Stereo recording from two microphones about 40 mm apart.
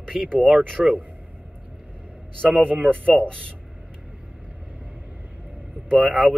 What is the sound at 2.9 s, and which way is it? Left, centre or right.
Speech, left.